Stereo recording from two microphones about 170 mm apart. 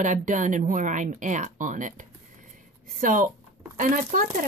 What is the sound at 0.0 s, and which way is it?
Speech, 50° right (ahead or behind).